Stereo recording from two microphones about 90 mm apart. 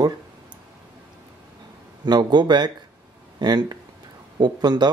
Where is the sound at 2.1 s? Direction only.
50° right (ahead or behind).